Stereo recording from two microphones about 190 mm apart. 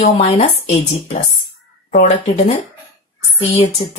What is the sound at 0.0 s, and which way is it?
Speech, 35° left (ahead or behind).